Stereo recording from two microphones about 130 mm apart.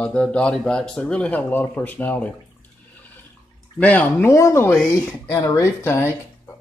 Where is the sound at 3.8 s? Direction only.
10° left (ahead or behind).